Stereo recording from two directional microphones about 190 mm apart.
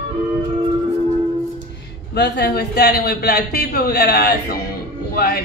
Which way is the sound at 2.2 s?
55° left (ahead or behind).